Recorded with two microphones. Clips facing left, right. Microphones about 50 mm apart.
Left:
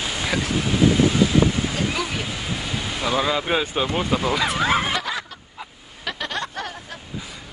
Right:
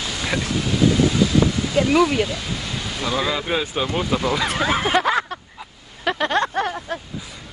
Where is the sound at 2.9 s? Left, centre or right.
Centre.